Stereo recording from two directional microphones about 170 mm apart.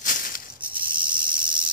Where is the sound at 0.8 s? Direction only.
55° right (ahead or behind).